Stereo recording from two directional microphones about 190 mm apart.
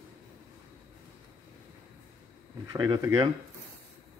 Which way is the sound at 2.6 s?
20° right (ahead or behind).